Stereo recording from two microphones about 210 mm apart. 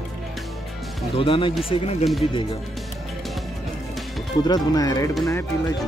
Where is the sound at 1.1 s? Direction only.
25° left (ahead or behind).